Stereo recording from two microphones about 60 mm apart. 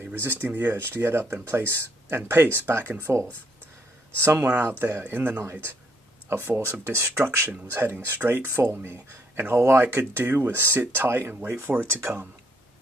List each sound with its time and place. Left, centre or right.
0.2 s speech: right
11.7 s speech: right